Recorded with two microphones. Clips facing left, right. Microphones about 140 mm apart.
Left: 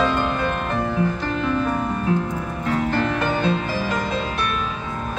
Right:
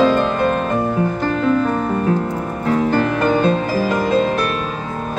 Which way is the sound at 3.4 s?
40° right (ahead or behind).